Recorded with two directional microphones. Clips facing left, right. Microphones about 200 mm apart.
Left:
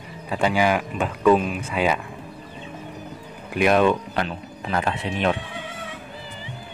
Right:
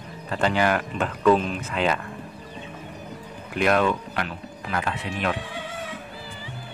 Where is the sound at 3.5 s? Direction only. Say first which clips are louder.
Left 3 dB; 15° left (ahead or behind).